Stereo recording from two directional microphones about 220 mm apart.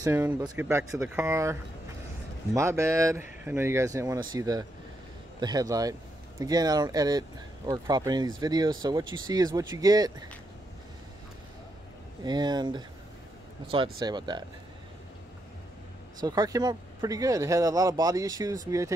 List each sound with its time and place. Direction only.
0.0 s speech: 10° right (ahead or behind)
12.3 s speech: 20° right (ahead or behind)
13.9 s speech: 20° right (ahead or behind)
16.2 s speech: 15° right (ahead or behind)